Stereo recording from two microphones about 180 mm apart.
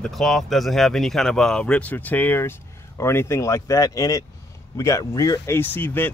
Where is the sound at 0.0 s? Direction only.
Centre (ahead or behind).